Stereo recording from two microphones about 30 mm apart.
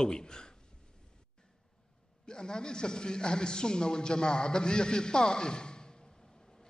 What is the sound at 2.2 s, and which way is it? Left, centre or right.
Speech, left.